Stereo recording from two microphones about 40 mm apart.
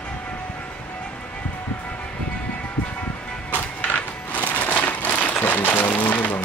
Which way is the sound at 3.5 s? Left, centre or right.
Left.